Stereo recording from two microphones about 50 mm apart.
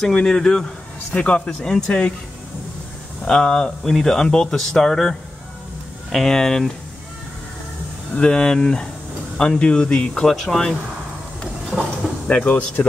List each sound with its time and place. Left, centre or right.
0.1 s speech: centre
1.6 s speech: centre
3.3 s speech: centre
6.1 s speech: centre
8.2 s speech: centre
10.2 s speech: centre
12.3 s speech: left